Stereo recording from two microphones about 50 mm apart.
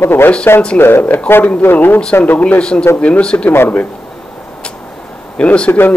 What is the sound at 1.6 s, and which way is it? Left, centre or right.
Speech, left.